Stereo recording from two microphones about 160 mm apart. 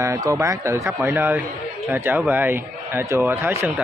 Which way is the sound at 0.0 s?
20° right (ahead or behind).